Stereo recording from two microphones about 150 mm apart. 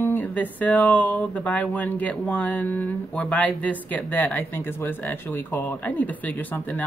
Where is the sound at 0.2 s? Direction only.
10° left (ahead or behind).